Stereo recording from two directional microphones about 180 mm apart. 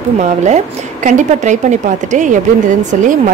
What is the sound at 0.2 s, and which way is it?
A woman's voice, 40° right (ahead or behind).